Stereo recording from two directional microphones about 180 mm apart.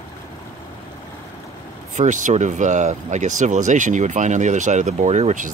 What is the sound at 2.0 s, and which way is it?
Speech, 45° right (ahead or behind).